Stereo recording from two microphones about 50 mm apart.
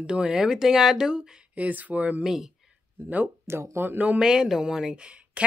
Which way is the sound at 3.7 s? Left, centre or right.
Right.